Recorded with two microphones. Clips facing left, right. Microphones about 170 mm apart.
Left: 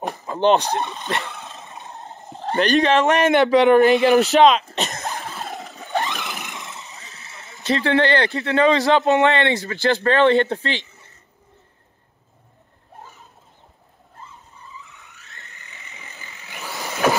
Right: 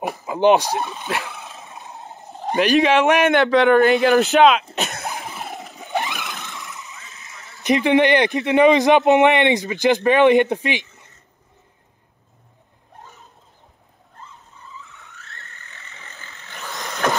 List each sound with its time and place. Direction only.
0.1 s dog: 5° right (ahead or behind)
2.5 s speech: 5° right (ahead or behind)
4.7 s cough: 5° right (ahead or behind)
5.1 s cough: 15° right (ahead or behind)
5.5 s vehicle: centre (ahead or behind)
5.8 s vehicle: 15° right (ahead or behind)
6.3 s vehicle: 15° left (ahead or behind)
6.8 s vehicle: 35° left (ahead or behind)
7.6 s speech: 15° right (ahead or behind)
15.0 s vehicle: 15° left (ahead or behind)
16.7 s vehicle: 5° left (ahead or behind)